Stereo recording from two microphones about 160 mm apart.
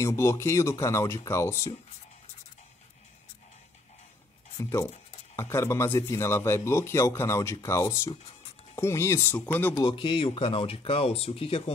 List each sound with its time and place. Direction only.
0.0 s a man's voice: 15° left (ahead or behind)
4.6 s a man's voice: 20° left (ahead or behind)
9.8 s speech: 30° left (ahead or behind)